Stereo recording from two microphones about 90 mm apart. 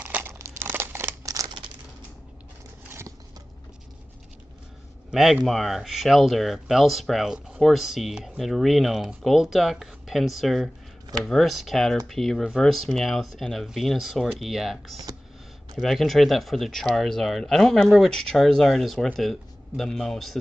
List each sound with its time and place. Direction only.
0.0 s crumpling: 25° right (ahead or behind)
1.2 s a sound: 40° right (ahead or behind)
5.1 s speech: 5° right (ahead or behind)